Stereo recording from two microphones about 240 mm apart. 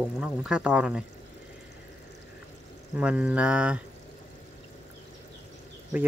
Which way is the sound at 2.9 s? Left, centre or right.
Centre.